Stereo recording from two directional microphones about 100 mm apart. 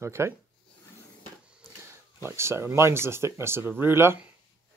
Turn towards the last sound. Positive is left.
turn(degrees=-25)  # may be behind; listen again after turning